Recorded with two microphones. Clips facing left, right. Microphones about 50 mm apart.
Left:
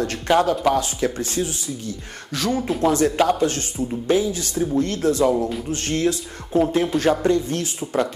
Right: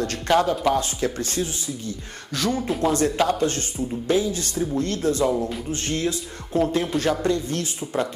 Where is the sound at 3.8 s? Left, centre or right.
Left.